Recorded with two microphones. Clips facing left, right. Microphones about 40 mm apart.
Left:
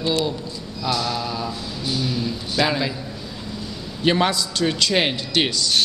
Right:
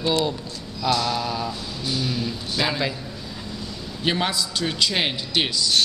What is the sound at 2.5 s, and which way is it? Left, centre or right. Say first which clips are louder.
Speech: left 4 dB; centre.